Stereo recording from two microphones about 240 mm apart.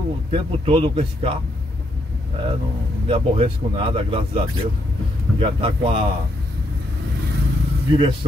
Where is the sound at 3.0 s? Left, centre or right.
Right.